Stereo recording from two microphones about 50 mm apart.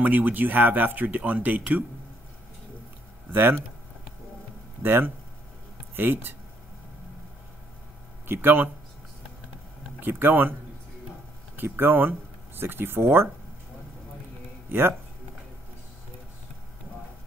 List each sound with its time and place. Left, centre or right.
0.0 s speech: right
3.3 s speech: right
4.8 s speech: right
8.3 s speech: right
9.9 s speech: right
11.5 s speech: right
14.7 s speech: right